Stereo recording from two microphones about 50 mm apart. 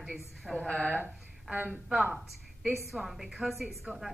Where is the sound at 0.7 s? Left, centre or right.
Centre.